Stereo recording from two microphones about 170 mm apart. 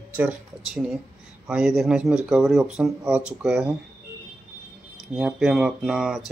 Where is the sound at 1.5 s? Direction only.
5° right (ahead or behind).